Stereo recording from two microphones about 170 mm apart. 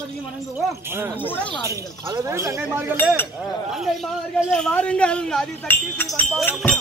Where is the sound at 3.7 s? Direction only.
Centre (ahead or behind).